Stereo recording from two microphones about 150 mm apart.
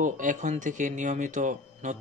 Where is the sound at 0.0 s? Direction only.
60° right (ahead or behind).